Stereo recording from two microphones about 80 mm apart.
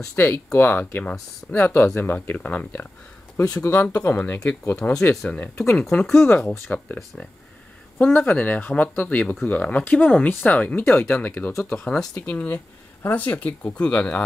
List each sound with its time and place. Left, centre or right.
0.1 s speech: left
3.5 s speech: left
8.0 s speech: left